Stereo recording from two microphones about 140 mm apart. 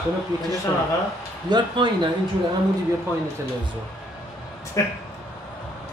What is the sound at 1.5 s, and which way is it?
Speech, 35° right (ahead or behind).